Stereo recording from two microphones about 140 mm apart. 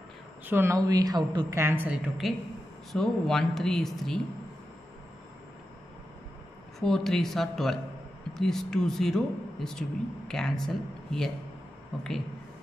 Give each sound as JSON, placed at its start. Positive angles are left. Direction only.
{"t": 0.5, "sound": "a woman's voice", "side_deg": -20}
{"t": 1.5, "sound": "a woman's voice", "side_deg": -15}
{"t": 2.2, "sound": "speech", "side_deg": 0}
{"t": 6.8, "sound": "speech", "side_deg": 5}